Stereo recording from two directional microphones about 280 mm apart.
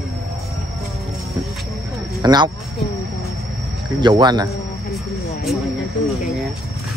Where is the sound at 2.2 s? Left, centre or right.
Centre.